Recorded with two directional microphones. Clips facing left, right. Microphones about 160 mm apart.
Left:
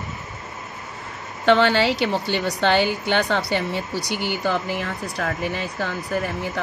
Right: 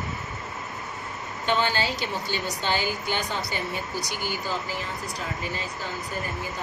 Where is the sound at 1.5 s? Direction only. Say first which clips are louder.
Left 9 dB; 70° left (ahead or behind).